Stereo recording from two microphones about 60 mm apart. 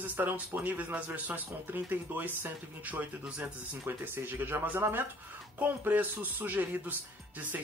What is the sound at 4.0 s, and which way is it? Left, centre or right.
Speech, right.